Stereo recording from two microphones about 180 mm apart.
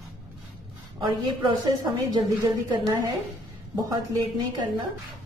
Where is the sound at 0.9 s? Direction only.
25° right (ahead or behind).